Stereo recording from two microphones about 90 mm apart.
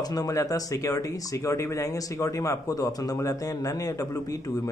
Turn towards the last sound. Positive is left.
turn(degrees=40)  # may be behind; listen again after turning